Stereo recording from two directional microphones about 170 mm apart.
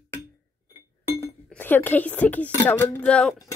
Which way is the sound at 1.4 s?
10° left (ahead or behind).